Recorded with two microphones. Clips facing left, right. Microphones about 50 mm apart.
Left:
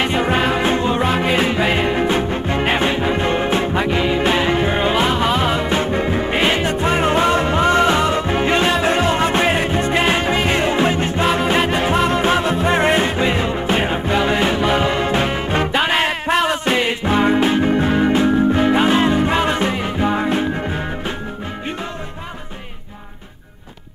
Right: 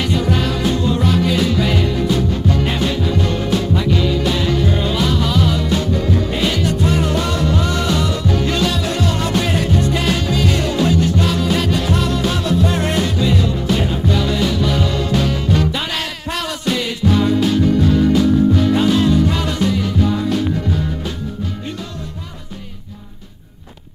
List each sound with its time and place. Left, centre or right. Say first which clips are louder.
0.0 s music: left 2 dB; left